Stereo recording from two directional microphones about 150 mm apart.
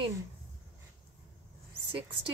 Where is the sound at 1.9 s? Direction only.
35° right (ahead or behind).